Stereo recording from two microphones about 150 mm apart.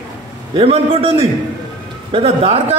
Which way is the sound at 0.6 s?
40° right (ahead or behind).